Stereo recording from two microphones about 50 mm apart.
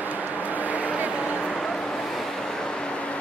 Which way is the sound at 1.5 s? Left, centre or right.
Centre.